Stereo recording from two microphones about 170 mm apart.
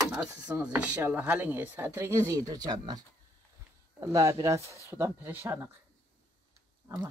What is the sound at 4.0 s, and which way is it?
Speech, 20° right (ahead or behind).